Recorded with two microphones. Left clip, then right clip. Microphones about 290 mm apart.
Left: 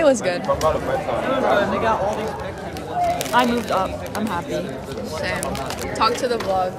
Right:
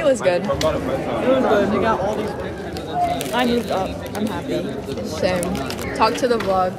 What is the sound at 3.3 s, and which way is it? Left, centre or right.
Speech, left.